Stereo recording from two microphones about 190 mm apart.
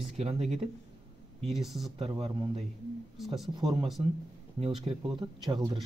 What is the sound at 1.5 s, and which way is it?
Speech, centre (ahead or behind).